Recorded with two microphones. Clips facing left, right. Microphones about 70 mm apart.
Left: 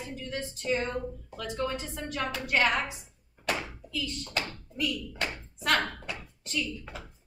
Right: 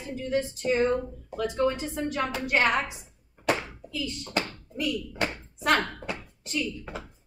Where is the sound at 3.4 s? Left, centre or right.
Right.